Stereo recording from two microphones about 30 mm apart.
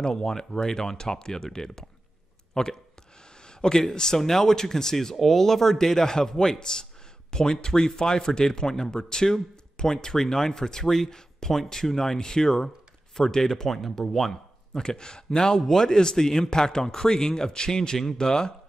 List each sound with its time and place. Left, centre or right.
0.1 s speech: centre
14.1 s speech: left